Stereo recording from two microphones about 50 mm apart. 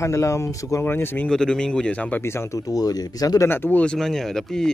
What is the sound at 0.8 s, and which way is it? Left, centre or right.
Speech, left.